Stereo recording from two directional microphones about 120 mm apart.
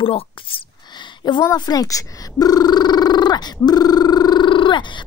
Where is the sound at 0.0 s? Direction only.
50° left (ahead or behind).